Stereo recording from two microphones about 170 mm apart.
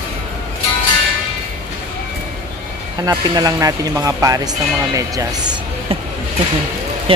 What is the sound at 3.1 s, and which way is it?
Speech, 20° right (ahead or behind).